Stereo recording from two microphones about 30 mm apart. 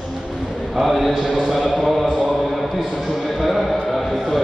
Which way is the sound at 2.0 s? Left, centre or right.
Right.